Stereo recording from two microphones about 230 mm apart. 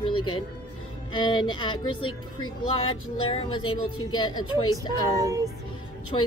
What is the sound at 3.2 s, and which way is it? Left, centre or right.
A woman's voice, left.